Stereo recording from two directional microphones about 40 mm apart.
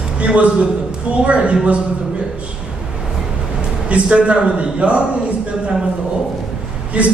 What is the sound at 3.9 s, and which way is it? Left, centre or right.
A man's voice, right.